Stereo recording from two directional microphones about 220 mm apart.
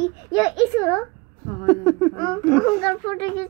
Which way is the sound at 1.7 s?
5° left (ahead or behind).